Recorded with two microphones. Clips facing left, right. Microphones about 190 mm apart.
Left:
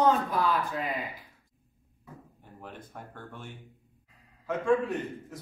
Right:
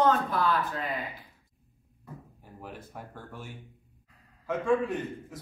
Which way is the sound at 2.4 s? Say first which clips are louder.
Right 1 dB; 5° right (ahead or behind).